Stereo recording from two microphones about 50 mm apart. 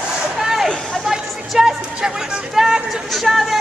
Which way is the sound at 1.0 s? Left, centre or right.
Centre.